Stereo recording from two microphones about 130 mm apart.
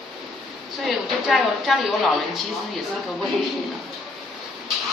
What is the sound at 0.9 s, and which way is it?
Speech, centre (ahead or behind).